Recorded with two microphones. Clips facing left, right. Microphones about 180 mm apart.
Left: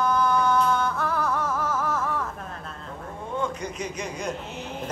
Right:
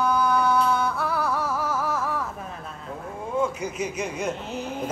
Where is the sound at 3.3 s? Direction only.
5° right (ahead or behind).